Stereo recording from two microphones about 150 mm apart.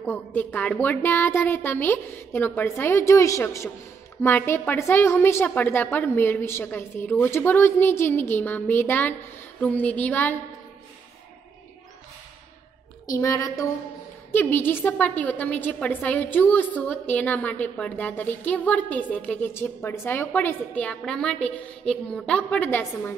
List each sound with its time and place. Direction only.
0.0 s a woman's voice: 15° left (ahead or behind)
13.1 s a woman's voice: 20° left (ahead or behind)